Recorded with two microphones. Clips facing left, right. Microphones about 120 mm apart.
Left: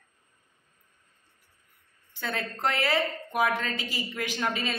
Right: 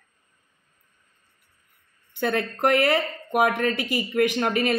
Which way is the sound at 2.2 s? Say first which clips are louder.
Right 8 dB; 60° right (ahead or behind).